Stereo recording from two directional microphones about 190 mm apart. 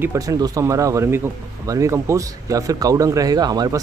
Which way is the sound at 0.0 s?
15° right (ahead or behind).